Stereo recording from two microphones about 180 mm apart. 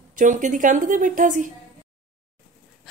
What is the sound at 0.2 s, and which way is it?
A woman's voice, 45° right (ahead or behind).